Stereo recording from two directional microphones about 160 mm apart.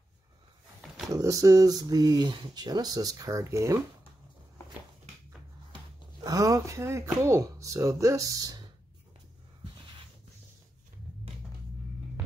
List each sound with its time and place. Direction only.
1.1 s speech: 20° right (ahead or behind)
6.2 s speech: 20° right (ahead or behind)